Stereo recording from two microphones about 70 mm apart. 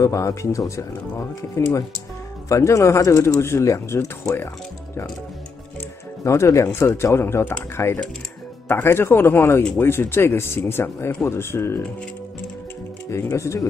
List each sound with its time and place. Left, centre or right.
0.0 s speech: left
6.2 s speech: left
13.4 s speech: left